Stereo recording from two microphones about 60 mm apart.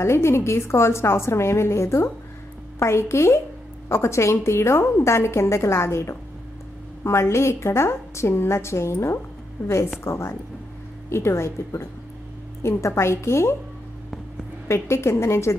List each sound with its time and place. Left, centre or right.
0.0 s a woman's voice: left
14.7 s a woman's voice: left